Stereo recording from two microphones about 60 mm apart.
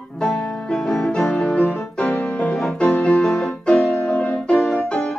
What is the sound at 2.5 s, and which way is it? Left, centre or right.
Music, centre.